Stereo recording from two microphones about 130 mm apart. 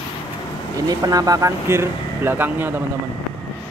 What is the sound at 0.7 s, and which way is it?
Speech, 30° right (ahead or behind).